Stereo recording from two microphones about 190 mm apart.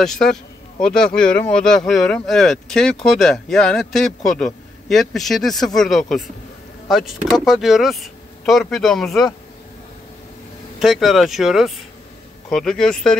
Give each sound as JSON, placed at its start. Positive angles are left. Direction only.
{"t": 0.0, "sound": "speech", "side_deg": 0}
{"t": 10.8, "sound": "speech", "side_deg": 0}